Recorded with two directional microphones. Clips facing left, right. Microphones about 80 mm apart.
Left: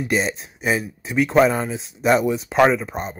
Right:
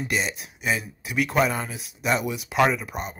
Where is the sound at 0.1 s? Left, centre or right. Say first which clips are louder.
Left 7 dB; left.